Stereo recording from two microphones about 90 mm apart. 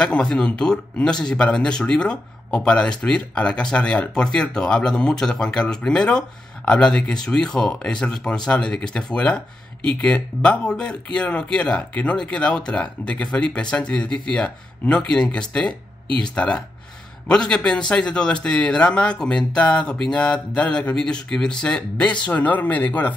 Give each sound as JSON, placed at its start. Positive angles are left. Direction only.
{"t": 0.0, "sound": "speech", "side_deg": 10}